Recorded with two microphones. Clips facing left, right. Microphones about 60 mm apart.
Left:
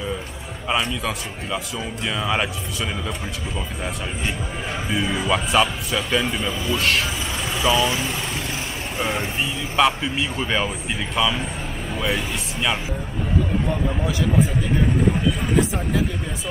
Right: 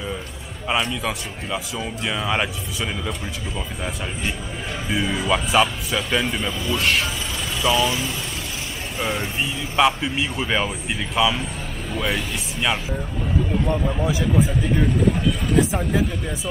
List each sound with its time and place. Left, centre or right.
0.7 s a man's voice: centre
8.9 s speech: centre
9.4 s a man's voice: centre
15.5 s a man's voice: centre